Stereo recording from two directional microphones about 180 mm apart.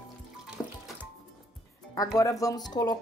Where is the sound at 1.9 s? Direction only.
20° left (ahead or behind).